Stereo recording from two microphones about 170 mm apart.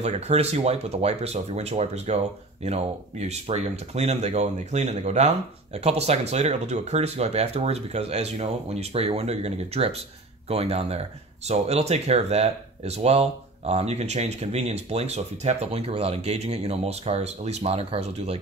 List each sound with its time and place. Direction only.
0.0 s speech: 40° right (ahead or behind)